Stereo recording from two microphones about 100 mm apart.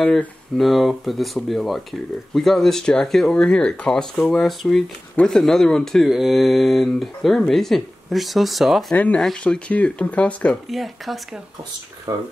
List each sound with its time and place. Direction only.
0.0 s speech: 10° left (ahead or behind)
0.6 s speech: centre (ahead or behind)
8.9 s speech: 15° left (ahead or behind)
10.7 s speech: centre (ahead or behind)
12.1 s speech: 40° right (ahead or behind)